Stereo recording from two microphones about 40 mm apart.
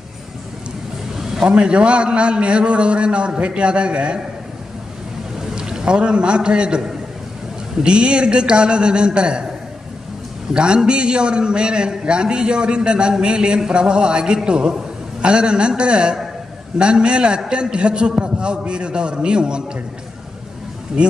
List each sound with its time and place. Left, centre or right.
1.4 s a man's voice: right
5.4 s a man's voice: centre
7.8 s a man's voice: right
10.5 s a man's voice: right
21.0 s a man's voice: right